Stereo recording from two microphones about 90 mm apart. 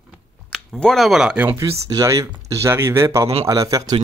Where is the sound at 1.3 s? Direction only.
20° right (ahead or behind).